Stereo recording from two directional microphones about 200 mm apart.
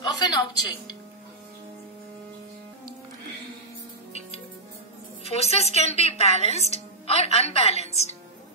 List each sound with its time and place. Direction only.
0.0 s speech: 20° left (ahead or behind)
5.2 s a woman's voice: 30° left (ahead or behind)